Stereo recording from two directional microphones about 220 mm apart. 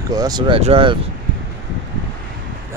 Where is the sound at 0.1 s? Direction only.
20° right (ahead or behind).